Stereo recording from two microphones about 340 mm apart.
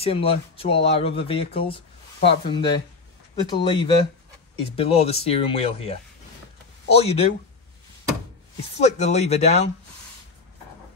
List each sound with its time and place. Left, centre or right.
0.0 s speech: centre
8.7 s speech: centre